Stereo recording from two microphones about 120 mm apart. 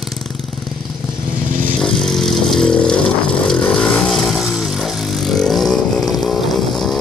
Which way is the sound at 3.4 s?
5° left (ahead or behind).